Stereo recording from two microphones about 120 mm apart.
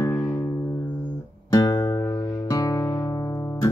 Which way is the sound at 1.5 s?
30° left (ahead or behind).